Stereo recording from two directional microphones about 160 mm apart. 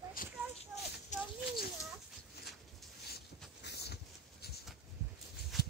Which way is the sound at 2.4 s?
90° left.